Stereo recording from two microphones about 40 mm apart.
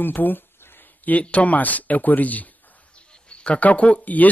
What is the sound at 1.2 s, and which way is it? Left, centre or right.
Speech, left.